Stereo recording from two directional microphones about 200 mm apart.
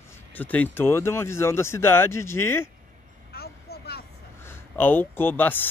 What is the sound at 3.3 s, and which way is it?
Vehicle, 50° left (ahead or behind).